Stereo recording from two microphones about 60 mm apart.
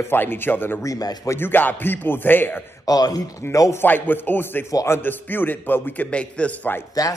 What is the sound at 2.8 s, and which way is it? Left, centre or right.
Speech, left.